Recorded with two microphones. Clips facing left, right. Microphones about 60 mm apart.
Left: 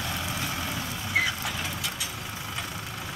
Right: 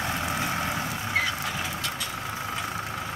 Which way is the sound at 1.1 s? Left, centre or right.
Centre.